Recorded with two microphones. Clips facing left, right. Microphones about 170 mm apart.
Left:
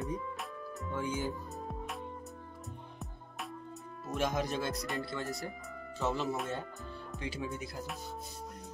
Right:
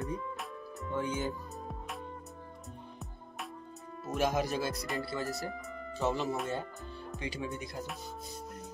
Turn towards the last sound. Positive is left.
turn(degrees=0)  # may be behind; listen again after turning